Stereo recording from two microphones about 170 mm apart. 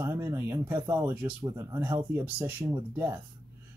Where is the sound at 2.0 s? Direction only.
10° right (ahead or behind).